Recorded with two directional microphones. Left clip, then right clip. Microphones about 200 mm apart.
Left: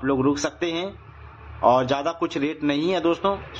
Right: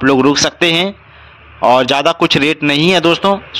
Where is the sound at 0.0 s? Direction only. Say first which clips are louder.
Right 12 dB; 40° right (ahead or behind).